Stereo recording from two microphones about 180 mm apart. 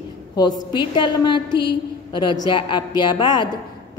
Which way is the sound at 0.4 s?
25° left (ahead or behind).